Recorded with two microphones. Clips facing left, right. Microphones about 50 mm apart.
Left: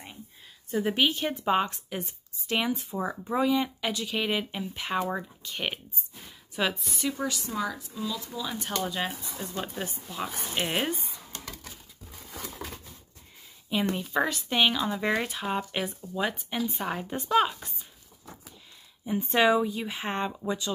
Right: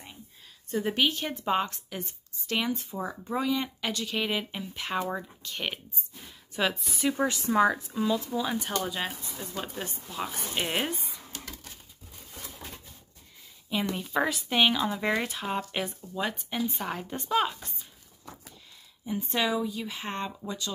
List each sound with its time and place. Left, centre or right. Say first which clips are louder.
0.7 s speech: left 1 dB; centre
7.2 s speech: right 7 dB; right
8.8 s speech: left 1 dB; centre
12.3 s a sound: left 5 dB; left
13.9 s speech: left 1 dB; centre
19.0 s speech: left 6 dB; left